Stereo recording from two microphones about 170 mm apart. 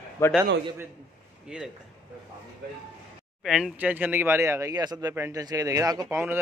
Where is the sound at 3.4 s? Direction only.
Centre (ahead or behind).